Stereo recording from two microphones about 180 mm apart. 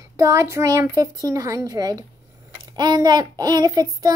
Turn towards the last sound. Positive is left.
turn(degrees=-20)  # may be behind; listen again after turning